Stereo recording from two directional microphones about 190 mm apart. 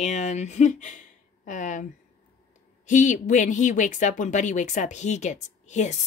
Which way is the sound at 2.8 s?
40° left (ahead or behind).